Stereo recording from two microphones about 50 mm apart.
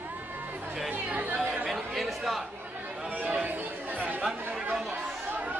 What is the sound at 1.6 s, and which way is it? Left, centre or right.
Chatter, centre.